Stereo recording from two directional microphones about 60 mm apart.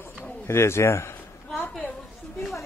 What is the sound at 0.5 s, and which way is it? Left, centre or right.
Speech, left.